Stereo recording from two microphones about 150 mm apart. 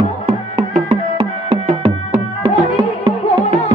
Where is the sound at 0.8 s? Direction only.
40° right (ahead or behind).